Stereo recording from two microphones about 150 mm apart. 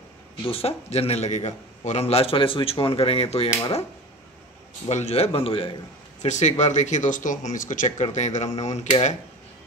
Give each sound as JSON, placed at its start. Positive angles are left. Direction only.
{"t": 0.5, "sound": "a man's voice", "side_deg": 40}
{"t": 4.8, "sound": "a man's voice", "side_deg": 45}
{"t": 6.2, "sound": "speech", "side_deg": 50}